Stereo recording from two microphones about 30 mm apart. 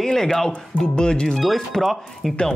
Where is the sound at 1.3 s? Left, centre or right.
Centre.